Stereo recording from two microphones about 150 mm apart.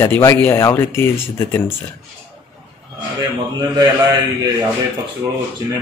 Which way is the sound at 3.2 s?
30° right (ahead or behind).